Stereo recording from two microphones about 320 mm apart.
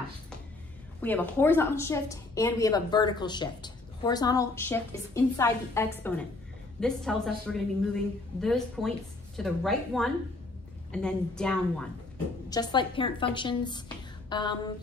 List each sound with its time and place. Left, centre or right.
1.0 s a woman's voice: centre
12.4 s a woman's voice: centre